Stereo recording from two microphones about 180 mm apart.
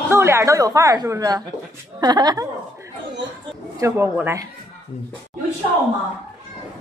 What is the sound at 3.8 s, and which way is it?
Speech, 15° right (ahead or behind).